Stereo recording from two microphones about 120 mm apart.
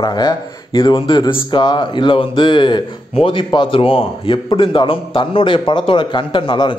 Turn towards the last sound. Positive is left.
turn(degrees=40)  # may be behind; listen again after turning